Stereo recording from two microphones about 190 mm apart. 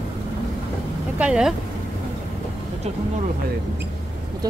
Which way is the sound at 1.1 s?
5° right (ahead or behind).